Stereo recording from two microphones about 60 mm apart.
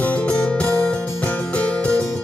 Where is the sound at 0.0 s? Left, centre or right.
Left.